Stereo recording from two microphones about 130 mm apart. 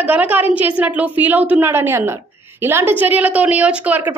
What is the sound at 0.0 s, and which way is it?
A woman's voice, 15° right (ahead or behind).